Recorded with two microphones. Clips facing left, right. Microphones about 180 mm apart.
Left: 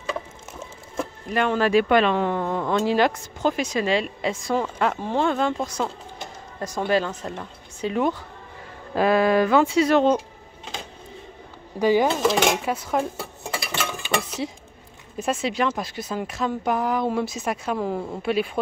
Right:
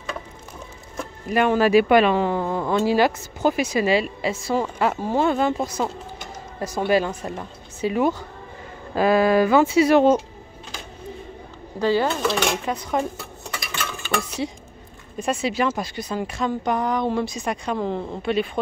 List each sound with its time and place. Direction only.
1.3 s speech: 10° right (ahead or behind)
11.8 s speech: 15° left (ahead or behind)
12.4 s speech: 5° left (ahead or behind)
13.2 s dishes: 30° left (ahead or behind)
15.1 s speech: centre (ahead or behind)